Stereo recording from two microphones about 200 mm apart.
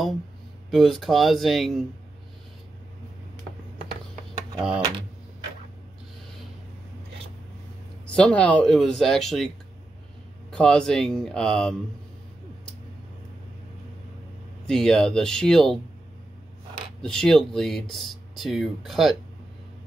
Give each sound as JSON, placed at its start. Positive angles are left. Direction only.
{"t": 0.7, "sound": "speech", "side_deg": 0}
{"t": 8.1, "sound": "speech", "side_deg": 5}
{"t": 10.5, "sound": "speech", "side_deg": 5}
{"t": 14.7, "sound": "speech", "side_deg": 0}
{"t": 17.0, "sound": "speech", "side_deg": 5}